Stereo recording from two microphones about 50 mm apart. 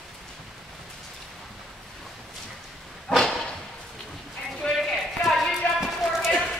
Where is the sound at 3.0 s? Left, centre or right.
Centre.